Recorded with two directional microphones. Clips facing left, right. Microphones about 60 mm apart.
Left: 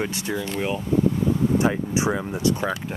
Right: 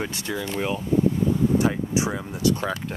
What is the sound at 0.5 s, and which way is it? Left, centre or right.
Speech, centre.